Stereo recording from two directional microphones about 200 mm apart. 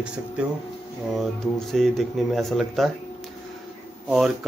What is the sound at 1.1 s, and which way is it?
Speech, centre (ahead or behind).